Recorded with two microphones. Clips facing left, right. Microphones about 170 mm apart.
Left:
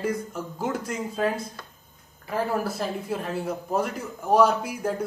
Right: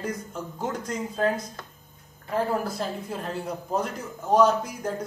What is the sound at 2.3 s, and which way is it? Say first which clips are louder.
A man's voice: even; 5° left (ahead or behind).